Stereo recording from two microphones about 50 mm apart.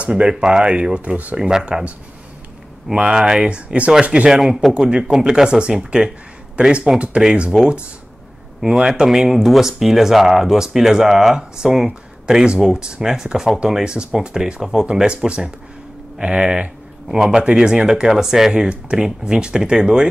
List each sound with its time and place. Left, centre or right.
0.0 s speech: centre
1.3 s speech: centre
2.9 s speech: centre
4.3 s speech: centre
4.7 s speech: centre
8.5 s speech: centre
18.5 s speech: centre